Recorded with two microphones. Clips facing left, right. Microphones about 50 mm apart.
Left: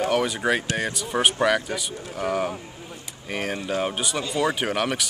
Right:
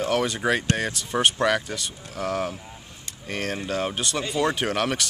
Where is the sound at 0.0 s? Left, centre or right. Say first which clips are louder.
Left 1 dB; centre.